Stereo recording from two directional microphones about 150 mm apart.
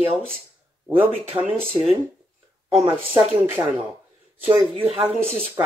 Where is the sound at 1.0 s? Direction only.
10° right (ahead or behind).